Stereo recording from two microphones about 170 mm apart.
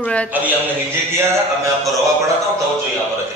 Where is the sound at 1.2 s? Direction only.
20° right (ahead or behind).